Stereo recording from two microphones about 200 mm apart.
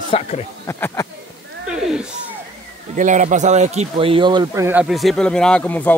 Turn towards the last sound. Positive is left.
turn(degrees=10)  # may be behind; listen again after turning